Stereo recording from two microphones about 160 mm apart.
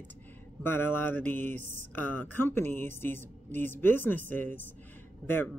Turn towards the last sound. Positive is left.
turn(degrees=10)  # may be behind; listen again after turning